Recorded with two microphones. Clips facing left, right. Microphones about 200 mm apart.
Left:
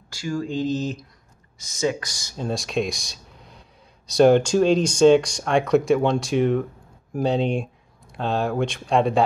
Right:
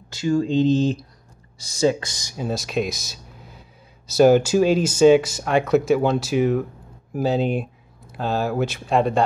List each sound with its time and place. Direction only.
0.1 s speech: 25° right (ahead or behind); by 9.2 s centre (ahead or behind)